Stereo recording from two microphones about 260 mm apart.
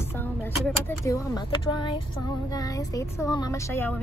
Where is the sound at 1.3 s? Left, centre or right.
Centre.